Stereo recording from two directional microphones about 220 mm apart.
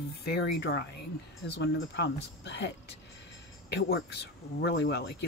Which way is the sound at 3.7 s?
50° left (ahead or behind).